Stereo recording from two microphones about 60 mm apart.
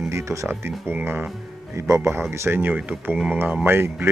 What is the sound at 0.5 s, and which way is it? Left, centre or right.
Speech, right.